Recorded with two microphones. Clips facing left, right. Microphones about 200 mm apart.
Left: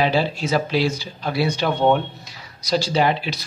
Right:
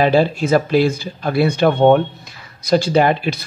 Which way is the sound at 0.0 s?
50° right (ahead or behind).